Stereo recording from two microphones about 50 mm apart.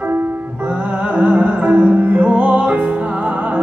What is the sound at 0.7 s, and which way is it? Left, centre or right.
Music, right.